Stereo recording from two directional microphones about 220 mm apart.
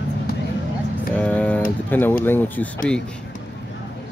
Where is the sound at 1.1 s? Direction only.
5° left (ahead or behind).